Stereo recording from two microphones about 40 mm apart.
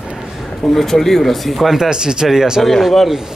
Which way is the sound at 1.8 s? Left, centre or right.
Centre.